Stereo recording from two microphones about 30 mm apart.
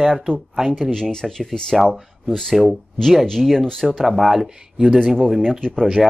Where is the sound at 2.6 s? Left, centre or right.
Centre.